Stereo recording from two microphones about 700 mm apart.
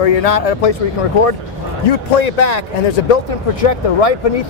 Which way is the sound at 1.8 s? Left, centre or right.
Left.